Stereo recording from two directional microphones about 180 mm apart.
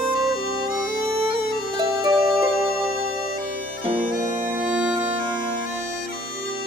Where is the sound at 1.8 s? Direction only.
25° right (ahead or behind).